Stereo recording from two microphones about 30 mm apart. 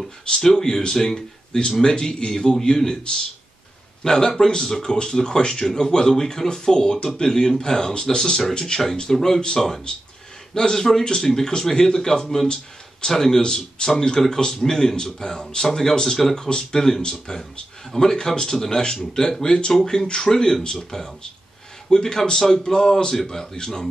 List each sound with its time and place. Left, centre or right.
0.3 s a man's voice: centre
4.0 s speech: left
9.9 s a man's voice: left
21.8 s speech: left